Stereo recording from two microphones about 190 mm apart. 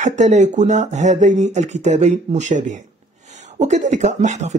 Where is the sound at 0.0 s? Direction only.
40° right (ahead or behind).